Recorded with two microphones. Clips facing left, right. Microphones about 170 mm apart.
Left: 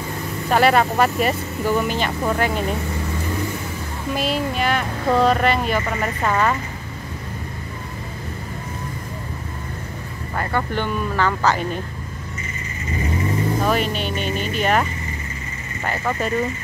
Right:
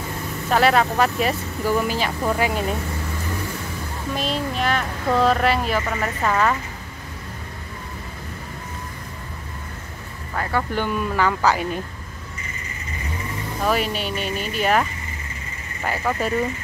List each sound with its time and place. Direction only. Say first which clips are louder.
0.5 s speech: left 1 dB; centre (ahead or behind)
4.1 s speech: left 3 dB; 5° left (ahead or behind)
10.3 s speech: even; centre (ahead or behind)
13.7 s speech: left 1 dB; 5° right (ahead or behind)